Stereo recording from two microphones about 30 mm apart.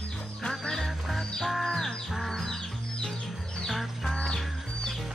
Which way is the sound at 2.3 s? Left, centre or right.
Centre.